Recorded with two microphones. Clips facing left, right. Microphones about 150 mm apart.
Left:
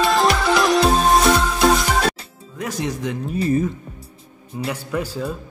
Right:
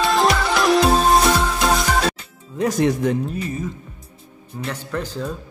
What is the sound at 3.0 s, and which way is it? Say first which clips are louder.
Speech: right 6 dB; 50° right (ahead or behind).